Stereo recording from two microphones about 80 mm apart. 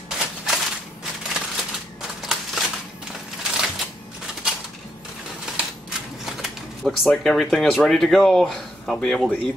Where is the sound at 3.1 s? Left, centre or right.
Centre.